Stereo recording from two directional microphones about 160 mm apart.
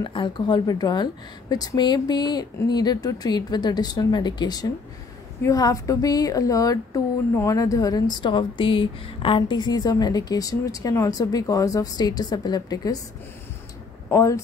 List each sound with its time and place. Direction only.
0.0 s speech: 30° left (ahead or behind)
14.1 s speech: 20° left (ahead or behind)